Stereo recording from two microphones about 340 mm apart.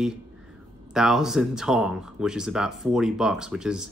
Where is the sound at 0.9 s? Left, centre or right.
Centre.